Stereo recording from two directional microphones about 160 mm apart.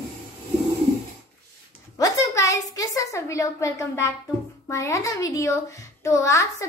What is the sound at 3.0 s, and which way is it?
A woman's voice, 20° left (ahead or behind).